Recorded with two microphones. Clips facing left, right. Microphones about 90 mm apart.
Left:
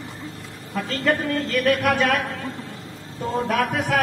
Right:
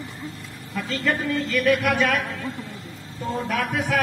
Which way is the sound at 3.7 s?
50° left (ahead or behind).